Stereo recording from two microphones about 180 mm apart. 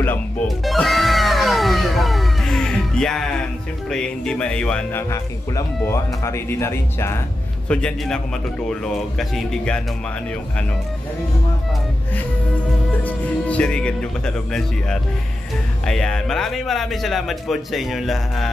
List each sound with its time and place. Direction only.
0.5 s music: centre (ahead or behind)
3.9 s a man's voice: 5° left (ahead or behind)
5.1 s a man's voice: 15° left (ahead or behind); by 9.8 s centre (ahead or behind)
13.0 s a man's voice: 5° left (ahead or behind)